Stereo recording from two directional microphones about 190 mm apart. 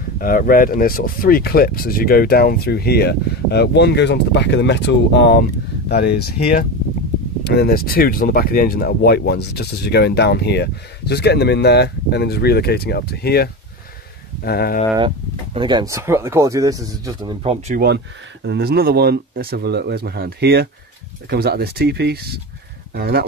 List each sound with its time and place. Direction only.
0.2 s speech: 50° left (ahead or behind)
15.0 s speech: 25° right (ahead or behind)
17.7 s speech: 60° right (ahead or behind)